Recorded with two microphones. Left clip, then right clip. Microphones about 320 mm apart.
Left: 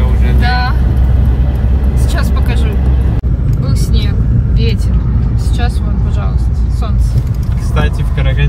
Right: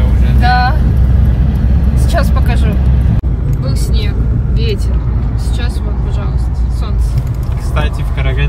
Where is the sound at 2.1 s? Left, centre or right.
Centre.